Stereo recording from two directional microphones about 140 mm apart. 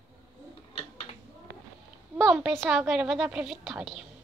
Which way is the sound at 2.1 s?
Centre (ahead or behind).